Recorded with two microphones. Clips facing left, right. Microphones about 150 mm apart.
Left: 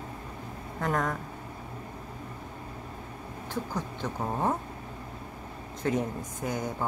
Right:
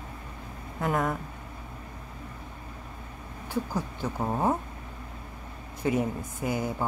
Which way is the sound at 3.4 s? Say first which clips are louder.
Right 3 dB; 10° right (ahead or behind).